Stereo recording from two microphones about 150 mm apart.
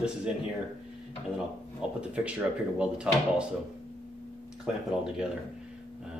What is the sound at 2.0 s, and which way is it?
Speech, 5° right (ahead or behind).